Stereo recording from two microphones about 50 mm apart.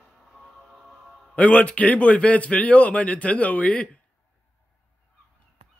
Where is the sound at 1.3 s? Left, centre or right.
Left.